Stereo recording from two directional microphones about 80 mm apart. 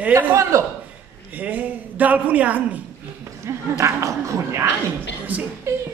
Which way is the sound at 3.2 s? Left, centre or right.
Right.